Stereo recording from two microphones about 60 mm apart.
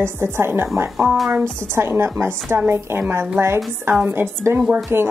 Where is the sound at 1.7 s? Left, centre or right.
Right.